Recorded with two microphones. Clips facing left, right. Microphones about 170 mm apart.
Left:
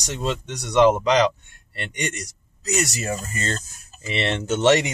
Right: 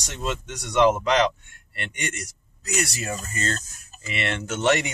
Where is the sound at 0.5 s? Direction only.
35° left (ahead or behind).